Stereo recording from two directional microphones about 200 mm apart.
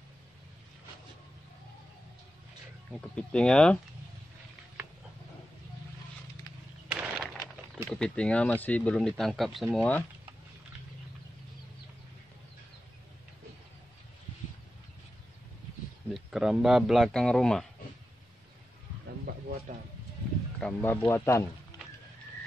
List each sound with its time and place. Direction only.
2.9 s speech: 5° left (ahead or behind)
6.9 s a sound: 5° right (ahead or behind)
7.2 s a sound: 5° left (ahead or behind)
7.9 s speech: 5° left (ahead or behind)
16.1 s speech: centre (ahead or behind)
19.7 s speech: 40° right (ahead or behind)
20.5 s speech: 5° left (ahead or behind)